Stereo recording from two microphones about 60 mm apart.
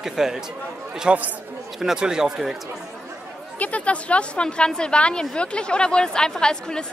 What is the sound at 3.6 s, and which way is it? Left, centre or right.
A woman's voice, left.